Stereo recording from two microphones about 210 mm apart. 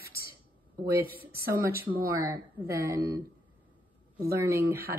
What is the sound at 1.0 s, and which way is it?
Speech, 45° right (ahead or behind).